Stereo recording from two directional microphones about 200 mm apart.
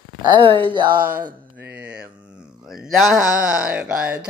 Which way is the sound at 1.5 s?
10° right (ahead or behind).